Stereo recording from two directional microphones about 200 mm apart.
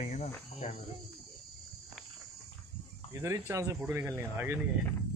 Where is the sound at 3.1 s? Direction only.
15° right (ahead or behind).